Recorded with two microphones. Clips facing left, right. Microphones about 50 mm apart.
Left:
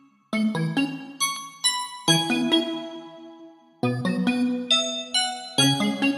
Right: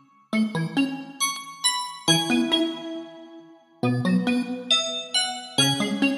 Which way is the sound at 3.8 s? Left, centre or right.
Centre.